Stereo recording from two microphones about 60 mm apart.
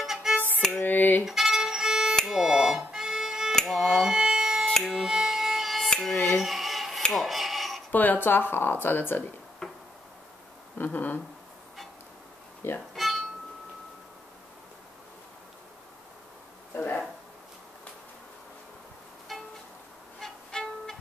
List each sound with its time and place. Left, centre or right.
0.0 s violin: centre
0.7 s a sound: left
1.2 s violin: centre
2.3 s music: centre
6.2 s cutlery: centre
7.0 s a sound: centre
7.9 s speech: left
9.6 s a sound: centre
10.8 s speech: left
12.9 s music: centre
16.7 s a sound: left
19.3 s music: centre
20.2 s violin: centre